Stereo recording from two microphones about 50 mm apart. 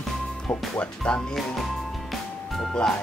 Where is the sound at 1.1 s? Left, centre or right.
Centre.